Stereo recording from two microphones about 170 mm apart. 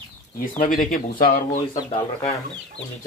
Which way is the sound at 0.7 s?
50° left (ahead or behind).